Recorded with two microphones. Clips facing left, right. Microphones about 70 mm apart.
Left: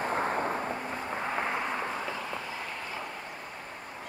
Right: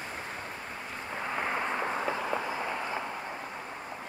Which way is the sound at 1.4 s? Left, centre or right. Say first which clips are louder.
Right 1 dB; centre.